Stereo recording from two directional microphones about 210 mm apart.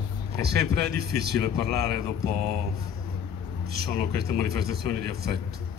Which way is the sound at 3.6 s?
50° right (ahead or behind).